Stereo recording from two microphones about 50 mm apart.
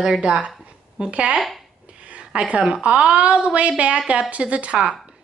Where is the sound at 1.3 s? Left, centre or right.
Centre.